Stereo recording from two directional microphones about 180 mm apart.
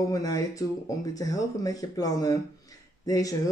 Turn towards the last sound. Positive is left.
turn(degrees=20)  # may be behind; listen again after turning